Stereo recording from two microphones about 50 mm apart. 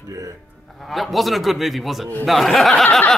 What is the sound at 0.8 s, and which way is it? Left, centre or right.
Speech, centre.